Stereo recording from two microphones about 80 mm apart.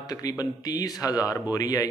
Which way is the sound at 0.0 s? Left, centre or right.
Left.